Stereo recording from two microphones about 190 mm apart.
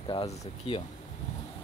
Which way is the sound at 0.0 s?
30° left (ahead or behind).